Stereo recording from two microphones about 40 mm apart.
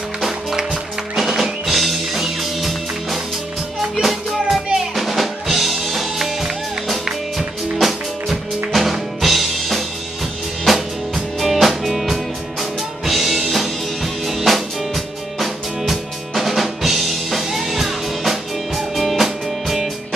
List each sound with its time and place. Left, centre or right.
0.2 s music: centre
15.3 s drum: centre